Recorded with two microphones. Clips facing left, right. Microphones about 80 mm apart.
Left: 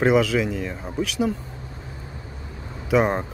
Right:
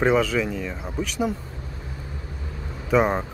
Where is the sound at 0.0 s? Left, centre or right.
Centre.